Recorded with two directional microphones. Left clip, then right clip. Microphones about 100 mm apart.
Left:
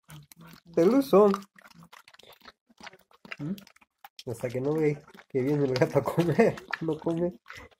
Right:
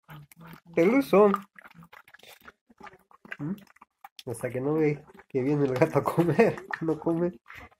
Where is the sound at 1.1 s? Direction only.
10° left (ahead or behind).